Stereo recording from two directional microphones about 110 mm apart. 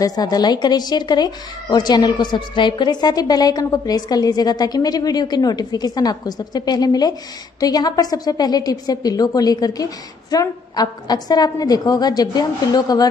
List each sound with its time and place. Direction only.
0.0 s a woman's voice: 35° left (ahead or behind)